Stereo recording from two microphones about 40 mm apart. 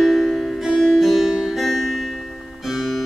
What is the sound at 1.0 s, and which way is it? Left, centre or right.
Music, centre.